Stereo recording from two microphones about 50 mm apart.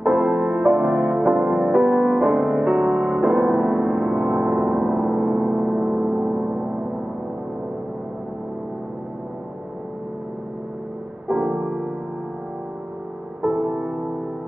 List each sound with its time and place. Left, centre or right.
0.0 s music: centre
11.2 s music: centre
13.4 s music: centre